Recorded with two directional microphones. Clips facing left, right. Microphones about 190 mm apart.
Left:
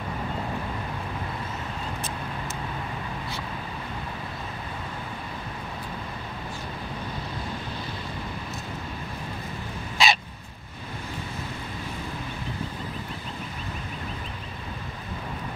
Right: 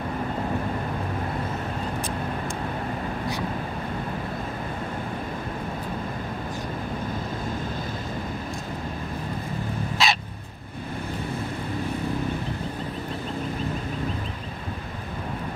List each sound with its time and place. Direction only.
10.0 s dog: centre (ahead or behind)